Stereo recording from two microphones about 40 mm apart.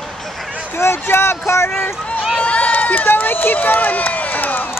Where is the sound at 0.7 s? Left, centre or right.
Left.